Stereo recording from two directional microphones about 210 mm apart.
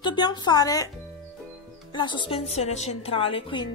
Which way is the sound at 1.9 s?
20° left (ahead or behind).